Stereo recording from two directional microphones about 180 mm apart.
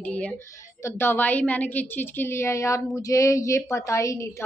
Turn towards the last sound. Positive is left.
turn(degrees=15)  # may be behind; listen again after turning